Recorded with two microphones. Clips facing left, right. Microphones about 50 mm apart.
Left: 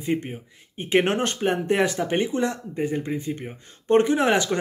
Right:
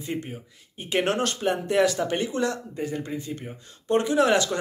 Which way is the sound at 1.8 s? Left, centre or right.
Left.